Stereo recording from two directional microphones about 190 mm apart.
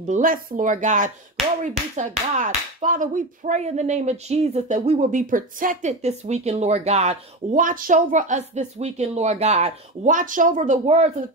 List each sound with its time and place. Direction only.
0.0 s speech: 40° right (ahead or behind)